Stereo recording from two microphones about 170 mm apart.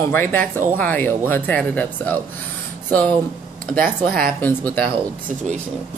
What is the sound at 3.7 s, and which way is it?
Speech, 55° right (ahead or behind).